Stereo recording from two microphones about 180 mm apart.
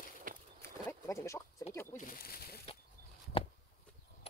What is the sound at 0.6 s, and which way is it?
Bird, 15° left (ahead or behind).